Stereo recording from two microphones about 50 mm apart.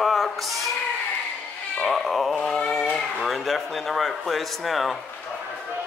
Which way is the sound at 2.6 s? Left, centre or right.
Centre.